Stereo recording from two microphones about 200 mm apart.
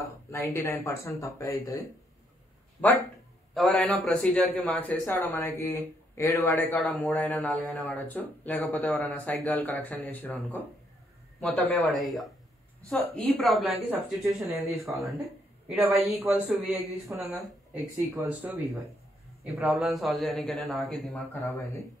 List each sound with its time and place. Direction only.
0.3 s a man's voice: 15° left (ahead or behind)
3.5 s a man's voice: 5° left (ahead or behind)
16.2 s a man's voice: 10° right (ahead or behind); by 21.6 s 10° left (ahead or behind)